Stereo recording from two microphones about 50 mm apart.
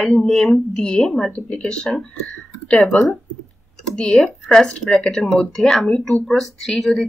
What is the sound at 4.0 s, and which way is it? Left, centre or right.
Speech, centre.